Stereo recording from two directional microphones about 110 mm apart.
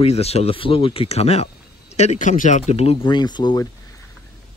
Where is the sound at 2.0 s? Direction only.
90° left; by 3.0 s 70° left (ahead or behind).